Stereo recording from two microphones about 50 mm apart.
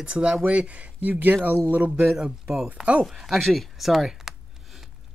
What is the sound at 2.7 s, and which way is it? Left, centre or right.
Speech, right.